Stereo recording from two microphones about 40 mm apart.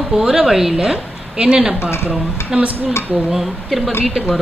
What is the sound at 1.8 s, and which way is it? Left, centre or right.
Speech, left.